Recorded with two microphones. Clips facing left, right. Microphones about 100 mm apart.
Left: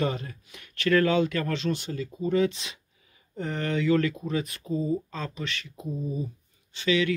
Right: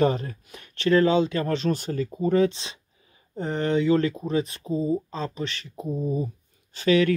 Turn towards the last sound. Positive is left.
turn(degrees=-45)  # may be behind; listen again after turning